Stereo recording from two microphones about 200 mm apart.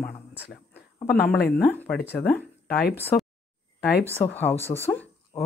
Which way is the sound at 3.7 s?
50° left (ahead or behind).